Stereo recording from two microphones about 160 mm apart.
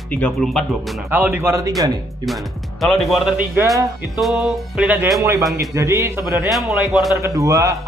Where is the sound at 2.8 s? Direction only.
Centre (ahead or behind).